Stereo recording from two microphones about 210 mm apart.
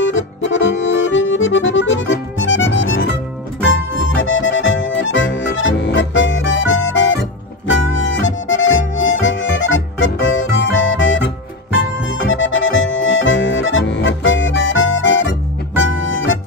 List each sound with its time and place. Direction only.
0.0 s accordion: 65° left (ahead or behind)
7.7 s harmonica: 65° left (ahead or behind)
12.1 s accordion: 65° left (ahead or behind)
15.8 s music: 65° left (ahead or behind)